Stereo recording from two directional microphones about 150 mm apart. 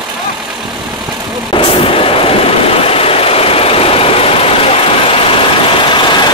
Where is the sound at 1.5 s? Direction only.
35° left (ahead or behind).